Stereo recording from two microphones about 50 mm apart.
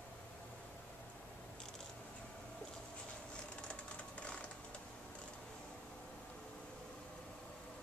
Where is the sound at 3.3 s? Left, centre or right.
Left.